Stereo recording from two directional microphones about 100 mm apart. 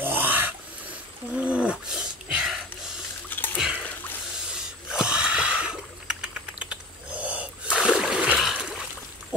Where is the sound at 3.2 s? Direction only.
20° left (ahead or behind).